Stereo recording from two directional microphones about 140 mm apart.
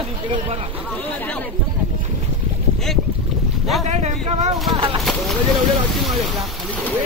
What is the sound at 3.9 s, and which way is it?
Speech, 50° right (ahead or behind).